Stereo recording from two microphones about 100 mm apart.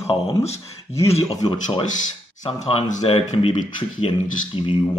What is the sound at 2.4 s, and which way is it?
Speech, 75° left (ahead or behind).